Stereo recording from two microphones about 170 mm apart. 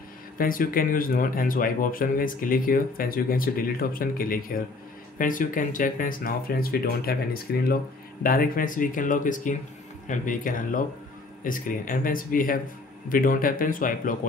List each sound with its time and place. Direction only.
0.4 s speech: 55° left (ahead or behind)